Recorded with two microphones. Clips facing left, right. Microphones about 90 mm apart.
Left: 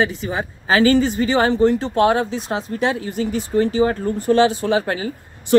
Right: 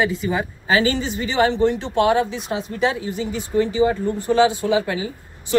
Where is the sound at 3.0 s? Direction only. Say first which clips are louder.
Left 3 dB; 50° left (ahead or behind).